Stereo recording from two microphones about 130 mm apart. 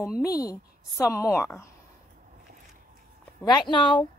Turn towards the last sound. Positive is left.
turn(degrees=40)  # may be behind; listen again after turning